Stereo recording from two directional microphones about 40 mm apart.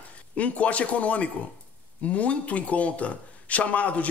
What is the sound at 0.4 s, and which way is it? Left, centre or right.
Speech, left.